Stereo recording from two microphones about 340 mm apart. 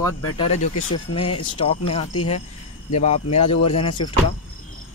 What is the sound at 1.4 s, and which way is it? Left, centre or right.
Speech, centre.